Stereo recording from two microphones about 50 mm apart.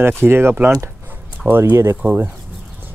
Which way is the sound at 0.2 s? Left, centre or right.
Right.